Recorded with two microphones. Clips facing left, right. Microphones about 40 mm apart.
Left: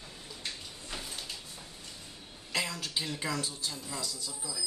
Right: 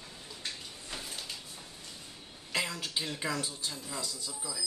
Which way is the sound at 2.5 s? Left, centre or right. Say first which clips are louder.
Even; centre.